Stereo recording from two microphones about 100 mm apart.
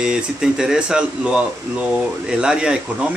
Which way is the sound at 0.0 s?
5° right (ahead or behind).